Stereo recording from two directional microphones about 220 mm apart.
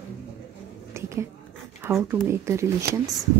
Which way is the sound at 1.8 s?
10° right (ahead or behind).